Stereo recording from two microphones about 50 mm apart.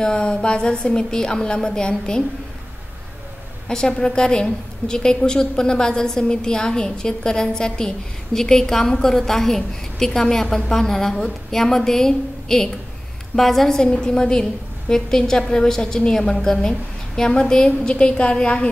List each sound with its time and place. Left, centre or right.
0.0 s a woman's voice: centre
3.6 s a woman's voice: centre